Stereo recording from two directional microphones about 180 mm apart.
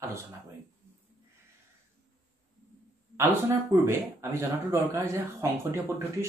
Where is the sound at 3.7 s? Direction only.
15° right (ahead or behind).